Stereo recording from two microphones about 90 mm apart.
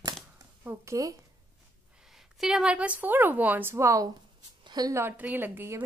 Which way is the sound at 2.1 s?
5° right (ahead or behind).